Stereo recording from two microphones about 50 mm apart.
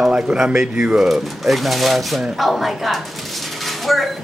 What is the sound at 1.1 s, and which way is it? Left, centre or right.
Speech, centre.